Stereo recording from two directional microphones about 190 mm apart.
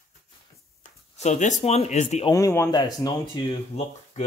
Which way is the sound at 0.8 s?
35° left (ahead or behind).